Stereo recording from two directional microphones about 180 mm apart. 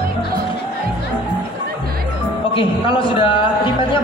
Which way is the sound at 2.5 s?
30° left (ahead or behind).